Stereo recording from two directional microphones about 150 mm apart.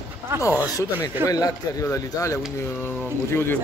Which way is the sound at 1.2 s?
25° left (ahead or behind).